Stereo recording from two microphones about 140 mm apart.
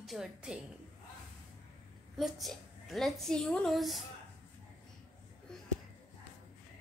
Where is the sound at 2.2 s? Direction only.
Centre (ahead or behind).